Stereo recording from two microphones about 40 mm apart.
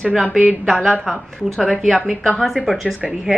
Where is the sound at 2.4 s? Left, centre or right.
Centre.